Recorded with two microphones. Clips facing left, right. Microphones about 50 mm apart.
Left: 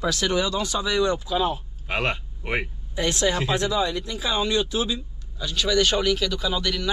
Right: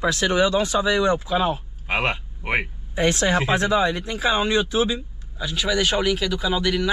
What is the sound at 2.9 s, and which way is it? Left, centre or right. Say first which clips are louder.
Speech: right 3 dB; right.